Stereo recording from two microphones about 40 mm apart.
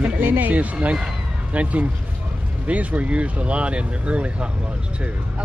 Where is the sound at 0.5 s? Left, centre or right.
Right.